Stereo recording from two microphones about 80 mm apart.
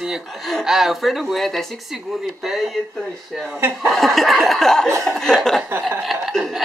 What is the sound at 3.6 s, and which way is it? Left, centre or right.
Speech, right.